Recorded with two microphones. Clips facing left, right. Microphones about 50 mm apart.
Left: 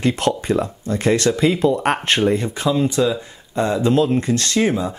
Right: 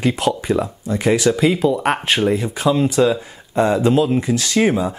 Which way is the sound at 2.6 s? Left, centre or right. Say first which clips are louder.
Right 3 dB; centre.